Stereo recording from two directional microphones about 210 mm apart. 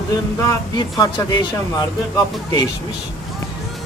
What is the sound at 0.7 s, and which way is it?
Speech, 20° left (ahead or behind).